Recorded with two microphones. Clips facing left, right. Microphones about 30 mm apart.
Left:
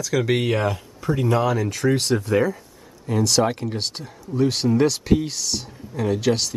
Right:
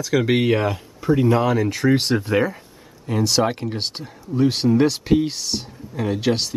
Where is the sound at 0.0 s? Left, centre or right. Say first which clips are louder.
Right 3 dB; centre.